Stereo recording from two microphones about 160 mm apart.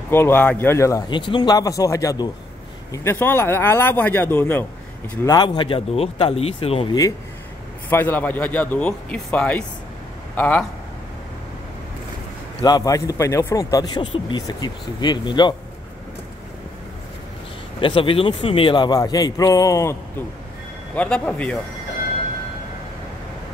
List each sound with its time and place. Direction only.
0.1 s a man's voice: 15° left (ahead or behind)
5.2 s speech: 25° left (ahead or behind)
7.9 s a man's voice: 10° left (ahead or behind)
12.6 s a man's voice: 25° left (ahead or behind)
17.7 s a man's voice: 35° left (ahead or behind)
20.9 s a man's voice: 5° left (ahead or behind)